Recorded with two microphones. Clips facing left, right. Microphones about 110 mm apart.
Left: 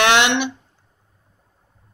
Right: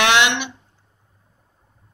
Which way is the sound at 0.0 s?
40° left (ahead or behind).